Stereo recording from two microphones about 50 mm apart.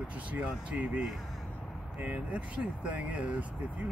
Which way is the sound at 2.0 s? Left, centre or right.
Right.